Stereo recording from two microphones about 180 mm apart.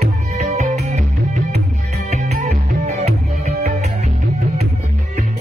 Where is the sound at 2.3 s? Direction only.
40° right (ahead or behind).